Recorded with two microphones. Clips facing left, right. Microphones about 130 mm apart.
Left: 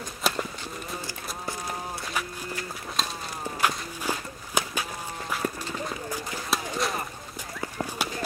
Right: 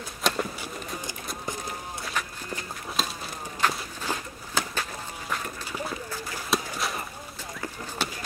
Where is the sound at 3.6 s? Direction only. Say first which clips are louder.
Even; 10° left (ahead or behind).